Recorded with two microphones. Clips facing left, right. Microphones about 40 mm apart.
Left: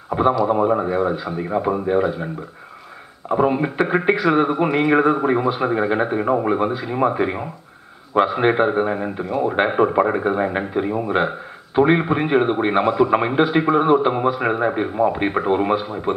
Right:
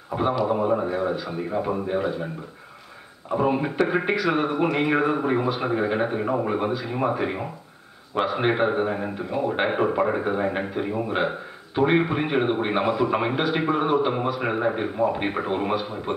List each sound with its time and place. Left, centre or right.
0.1 s a man's voice: centre
0.6 s speech: left
0.9 s speech: centre
1.5 s speech: left
1.9 s a man's voice: centre
3.3 s a man's voice: left